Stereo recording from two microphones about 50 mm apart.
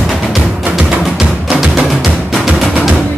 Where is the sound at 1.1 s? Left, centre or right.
Centre.